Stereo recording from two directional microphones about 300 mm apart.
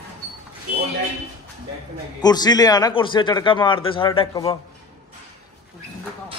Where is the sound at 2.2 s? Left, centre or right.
Centre.